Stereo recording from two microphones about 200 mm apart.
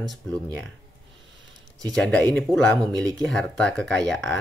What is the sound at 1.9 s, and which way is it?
Speech, 5° left (ahead or behind).